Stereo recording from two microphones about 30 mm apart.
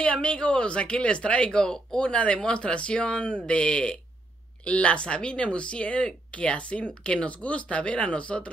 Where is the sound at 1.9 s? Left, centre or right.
Left.